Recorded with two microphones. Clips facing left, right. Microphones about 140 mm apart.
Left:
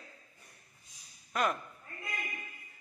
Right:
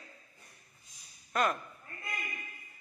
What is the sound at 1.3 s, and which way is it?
Speech, centre (ahead or behind).